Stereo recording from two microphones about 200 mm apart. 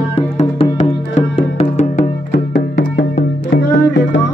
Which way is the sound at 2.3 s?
60° left (ahead or behind).